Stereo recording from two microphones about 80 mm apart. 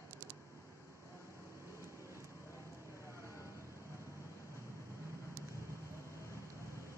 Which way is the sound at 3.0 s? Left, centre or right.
Left.